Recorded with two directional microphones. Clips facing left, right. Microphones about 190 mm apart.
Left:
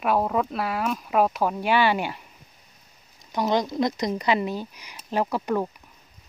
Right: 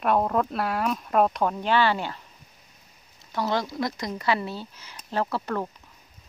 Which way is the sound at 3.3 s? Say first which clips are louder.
Left 3 dB; 15° left (ahead or behind).